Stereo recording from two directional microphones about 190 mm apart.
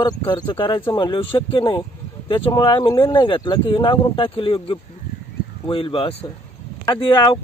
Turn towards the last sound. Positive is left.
turn(degrees=25)  # may be behind; listen again after turning